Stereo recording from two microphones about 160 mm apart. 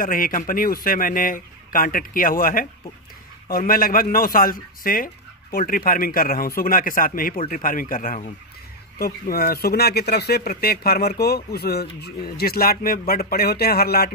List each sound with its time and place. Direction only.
0.0 s speech: 60° left (ahead or behind)
8.9 s speech: 75° left (ahead or behind)